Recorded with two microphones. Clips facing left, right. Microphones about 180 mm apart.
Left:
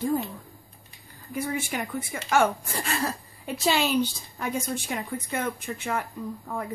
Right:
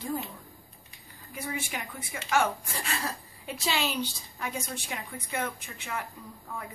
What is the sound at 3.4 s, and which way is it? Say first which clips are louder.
A woman's voice: left 6 dB; 50° left (ahead or behind).